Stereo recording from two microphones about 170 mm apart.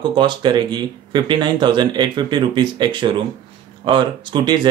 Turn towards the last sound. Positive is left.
turn(degrees=-25)  # may be behind; listen again after turning